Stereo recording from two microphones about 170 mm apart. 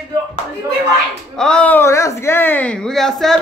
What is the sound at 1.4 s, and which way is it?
Speech, 5° left (ahead or behind).